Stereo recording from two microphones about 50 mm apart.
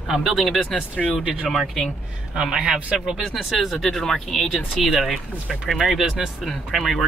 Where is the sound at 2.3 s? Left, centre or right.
Centre.